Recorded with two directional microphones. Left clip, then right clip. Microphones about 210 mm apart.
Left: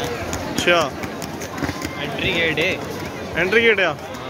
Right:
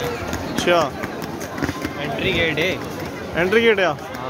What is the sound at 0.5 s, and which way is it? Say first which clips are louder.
Speech: even; 15° right (ahead or behind).